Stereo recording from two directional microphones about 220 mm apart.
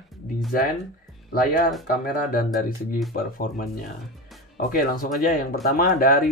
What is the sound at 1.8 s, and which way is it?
Speech, 40° left (ahead or behind).